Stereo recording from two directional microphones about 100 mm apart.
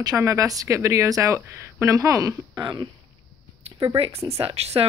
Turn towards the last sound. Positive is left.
turn(degrees=-80)